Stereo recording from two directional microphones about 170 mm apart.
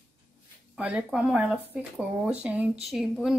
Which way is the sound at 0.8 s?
5° right (ahead or behind).